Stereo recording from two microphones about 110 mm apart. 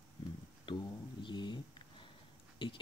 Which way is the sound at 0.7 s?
45° left (ahead or behind).